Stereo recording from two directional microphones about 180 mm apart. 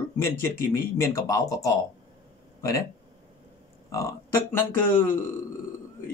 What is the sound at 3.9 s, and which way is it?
Speech, 15° left (ahead or behind).